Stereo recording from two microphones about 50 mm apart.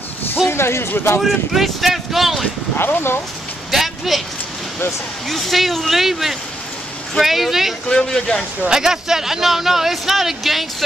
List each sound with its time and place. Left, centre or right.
0.5 s speech: left
1.2 s speech: centre
2.8 s speech: left
3.7 s a sound: centre
5.3 s speech: centre
7.9 s speech: centre
8.6 s a man's voice: centre